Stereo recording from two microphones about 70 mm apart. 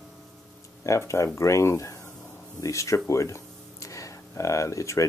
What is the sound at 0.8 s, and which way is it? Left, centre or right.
Speech, left.